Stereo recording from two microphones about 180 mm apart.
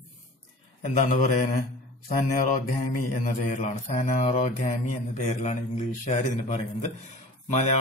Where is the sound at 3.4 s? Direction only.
40° left (ahead or behind).